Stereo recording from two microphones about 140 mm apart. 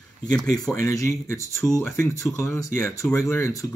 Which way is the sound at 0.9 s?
20° left (ahead or behind).